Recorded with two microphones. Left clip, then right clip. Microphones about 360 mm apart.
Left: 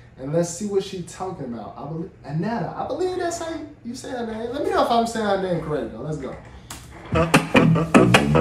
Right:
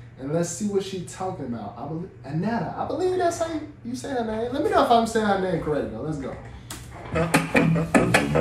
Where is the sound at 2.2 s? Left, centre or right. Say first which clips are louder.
Left 1 dB; centre.